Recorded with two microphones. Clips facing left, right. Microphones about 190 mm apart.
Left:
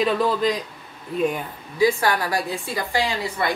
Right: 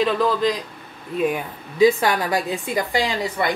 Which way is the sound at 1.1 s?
5° right (ahead or behind).